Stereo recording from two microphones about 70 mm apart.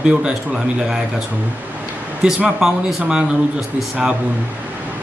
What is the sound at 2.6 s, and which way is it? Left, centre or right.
Speech, centre.